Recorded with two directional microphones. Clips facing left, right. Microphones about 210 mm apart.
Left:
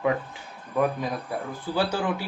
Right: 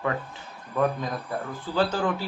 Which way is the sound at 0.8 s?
10° left (ahead or behind).